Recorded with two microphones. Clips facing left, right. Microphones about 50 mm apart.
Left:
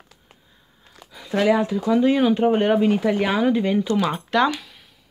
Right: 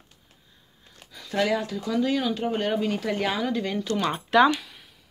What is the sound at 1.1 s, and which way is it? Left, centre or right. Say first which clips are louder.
Speech: left 6 dB; centre.